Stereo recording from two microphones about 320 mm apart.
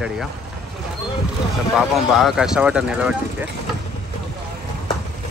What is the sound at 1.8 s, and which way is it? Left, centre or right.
Speech, centre.